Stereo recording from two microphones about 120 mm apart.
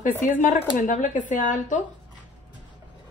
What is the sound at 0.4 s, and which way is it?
Speech, 90° left.